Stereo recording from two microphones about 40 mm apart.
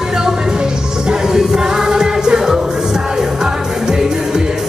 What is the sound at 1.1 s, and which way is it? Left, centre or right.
Music, centre.